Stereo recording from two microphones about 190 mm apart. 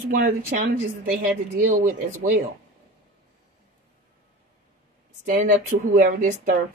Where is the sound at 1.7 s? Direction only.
45° right (ahead or behind).